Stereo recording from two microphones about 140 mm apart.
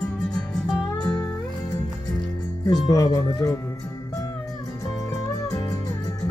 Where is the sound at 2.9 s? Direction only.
25° left (ahead or behind).